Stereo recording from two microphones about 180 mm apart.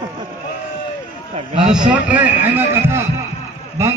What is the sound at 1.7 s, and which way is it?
A man's voice, 5° right (ahead or behind).